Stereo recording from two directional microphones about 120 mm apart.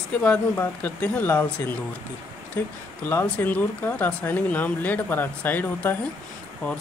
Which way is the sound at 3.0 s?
15° left (ahead or behind).